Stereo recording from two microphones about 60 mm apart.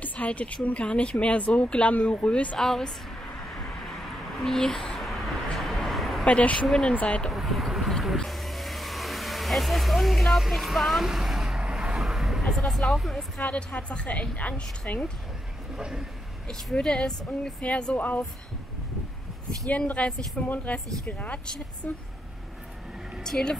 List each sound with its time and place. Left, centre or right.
0.0 s speech: left
2.6 s speech: centre
4.4 s a sound: centre
6.2 s speech: centre
7.2 s vehicle: centre
12.7 s a woman's voice: centre
13.4 s speech: left
15.7 s speech: centre
16.7 s speech: centre
20.0 s speech: centre
23.2 s speech: centre